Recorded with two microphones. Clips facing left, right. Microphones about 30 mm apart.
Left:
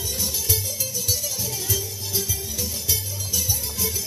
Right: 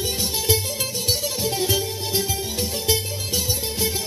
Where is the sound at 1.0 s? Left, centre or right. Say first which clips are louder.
Right 6 dB; right.